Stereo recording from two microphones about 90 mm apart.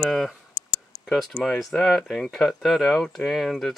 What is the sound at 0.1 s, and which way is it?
Speech, centre (ahead or behind).